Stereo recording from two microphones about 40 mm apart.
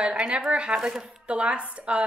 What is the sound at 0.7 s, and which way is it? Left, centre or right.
Speech, centre.